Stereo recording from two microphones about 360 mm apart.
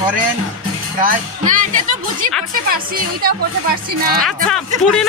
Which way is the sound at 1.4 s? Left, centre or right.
Right.